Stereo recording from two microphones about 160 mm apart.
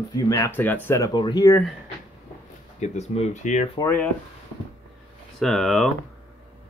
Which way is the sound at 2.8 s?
45° left (ahead or behind).